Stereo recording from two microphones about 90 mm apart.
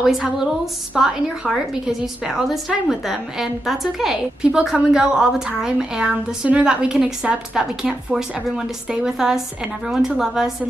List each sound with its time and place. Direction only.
0.0 s a woman's voice: 5° right (ahead or behind)